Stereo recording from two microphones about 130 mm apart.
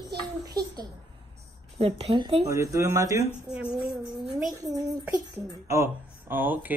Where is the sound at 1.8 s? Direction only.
50° right (ahead or behind).